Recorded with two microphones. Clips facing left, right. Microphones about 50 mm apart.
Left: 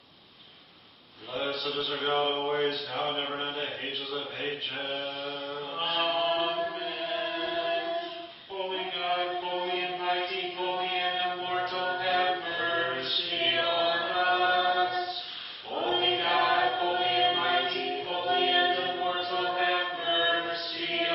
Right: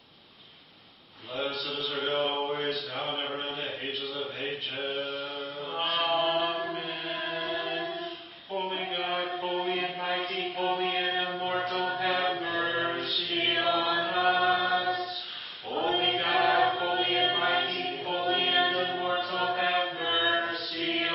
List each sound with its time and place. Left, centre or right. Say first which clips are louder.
1.5 s mantra: left 2 dB; centre
4.7 s mantra: right 1 dB; centre
5.9 s music: right 1 dB; centre
7.6 s choir: left 3 dB; centre
8.5 s mantra: right 1 dB; centre
15.7 s choir: even; centre
17.3 s music: even; centre
17.6 s a capella: left 1 dB; centre
19.3 s mantra: left 1 dB; centre